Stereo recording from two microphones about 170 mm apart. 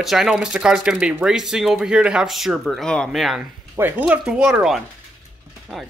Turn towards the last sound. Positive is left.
turn(degrees=-5)  # may be behind; listen again after turning